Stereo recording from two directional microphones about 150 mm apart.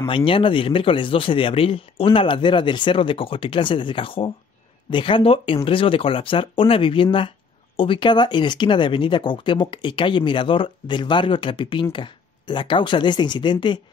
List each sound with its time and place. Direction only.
0.1 s speech: 35° left (ahead or behind)